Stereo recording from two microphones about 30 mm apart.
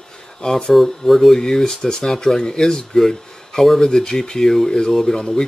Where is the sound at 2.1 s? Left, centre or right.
Centre.